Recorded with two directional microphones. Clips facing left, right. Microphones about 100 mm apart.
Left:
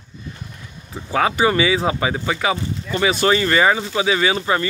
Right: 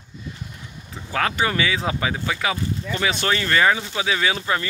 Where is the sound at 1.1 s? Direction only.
10° left (ahead or behind).